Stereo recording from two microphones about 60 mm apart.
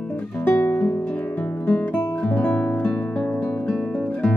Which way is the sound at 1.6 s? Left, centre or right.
Left.